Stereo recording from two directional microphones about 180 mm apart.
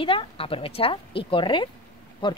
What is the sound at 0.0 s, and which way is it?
A woman's voice, 30° left (ahead or behind).